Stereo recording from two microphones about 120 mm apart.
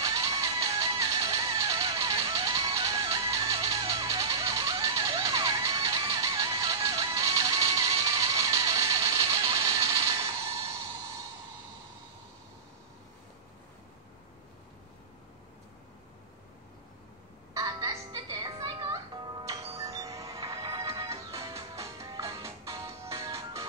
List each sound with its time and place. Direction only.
0.0 s music: 30° right (ahead or behind)
9.5 s mechanisms: 30° right (ahead or behind)
17.6 s music: 30° right (ahead or behind)